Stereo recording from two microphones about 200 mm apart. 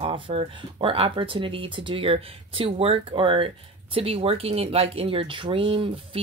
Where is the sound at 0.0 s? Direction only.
30° right (ahead or behind).